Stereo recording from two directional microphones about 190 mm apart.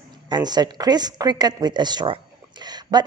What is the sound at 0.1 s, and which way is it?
A woman's voice, 20° right (ahead or behind).